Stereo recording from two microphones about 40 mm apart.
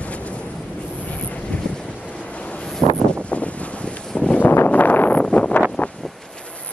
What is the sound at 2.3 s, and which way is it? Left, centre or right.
Vehicle, left.